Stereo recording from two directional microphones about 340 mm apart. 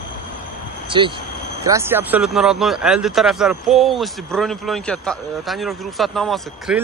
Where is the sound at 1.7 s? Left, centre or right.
Centre.